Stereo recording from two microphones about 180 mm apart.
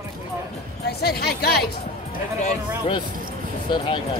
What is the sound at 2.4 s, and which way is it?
Speech, 30° left (ahead or behind).